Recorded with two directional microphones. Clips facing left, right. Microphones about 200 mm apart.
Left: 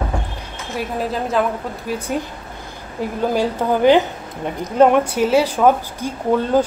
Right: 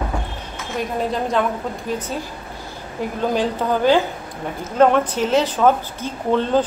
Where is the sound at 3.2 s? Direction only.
10° left (ahead or behind).